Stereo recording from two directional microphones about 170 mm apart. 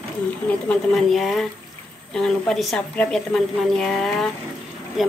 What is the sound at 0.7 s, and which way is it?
Speech, centre (ahead or behind).